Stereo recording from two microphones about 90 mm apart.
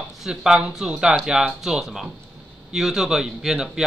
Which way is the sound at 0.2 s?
5° right (ahead or behind).